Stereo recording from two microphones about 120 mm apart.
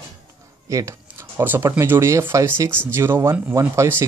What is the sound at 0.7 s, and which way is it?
Speech, 30° right (ahead or behind).